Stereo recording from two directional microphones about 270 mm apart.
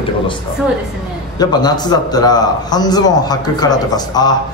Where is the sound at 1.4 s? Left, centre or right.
Centre.